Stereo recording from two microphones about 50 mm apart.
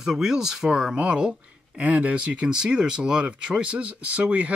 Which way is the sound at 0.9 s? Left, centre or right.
Right.